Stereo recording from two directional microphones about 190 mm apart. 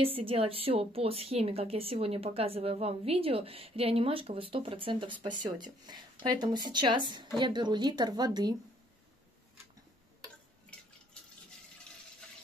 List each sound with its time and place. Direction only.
0.0 s a woman's voice: 30° right (ahead or behind)